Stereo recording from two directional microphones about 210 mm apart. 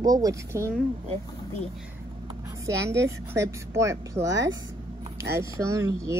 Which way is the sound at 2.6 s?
15° right (ahead or behind).